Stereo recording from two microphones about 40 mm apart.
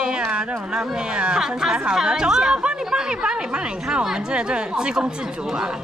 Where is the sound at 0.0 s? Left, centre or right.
Right.